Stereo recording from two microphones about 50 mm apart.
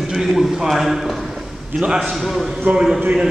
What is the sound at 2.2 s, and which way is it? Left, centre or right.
Speech, centre.